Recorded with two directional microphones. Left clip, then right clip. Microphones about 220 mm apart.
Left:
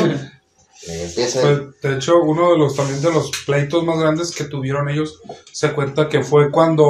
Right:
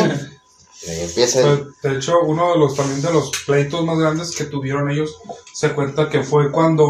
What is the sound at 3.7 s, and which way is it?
Speech, 40° left (ahead or behind).